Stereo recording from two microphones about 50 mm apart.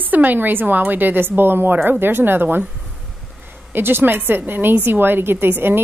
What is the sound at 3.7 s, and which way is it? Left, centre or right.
A woman's voice, right.